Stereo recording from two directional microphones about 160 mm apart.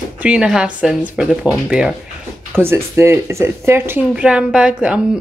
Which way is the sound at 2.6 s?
15° right (ahead or behind).